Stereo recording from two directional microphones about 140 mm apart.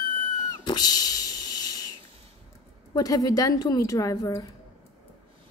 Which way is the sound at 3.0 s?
30° left (ahead or behind).